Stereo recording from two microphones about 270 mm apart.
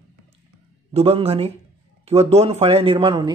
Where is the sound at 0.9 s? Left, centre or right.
Right.